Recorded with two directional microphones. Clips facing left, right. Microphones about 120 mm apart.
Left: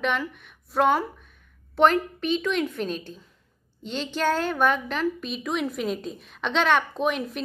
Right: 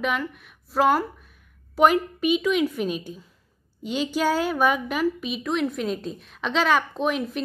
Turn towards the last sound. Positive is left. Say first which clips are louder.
# right 1 dB
turn(degrees=0)  # may be behind; listen again after turning